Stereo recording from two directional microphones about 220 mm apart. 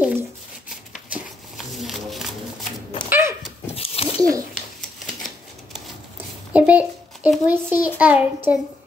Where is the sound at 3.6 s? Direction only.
25° left (ahead or behind).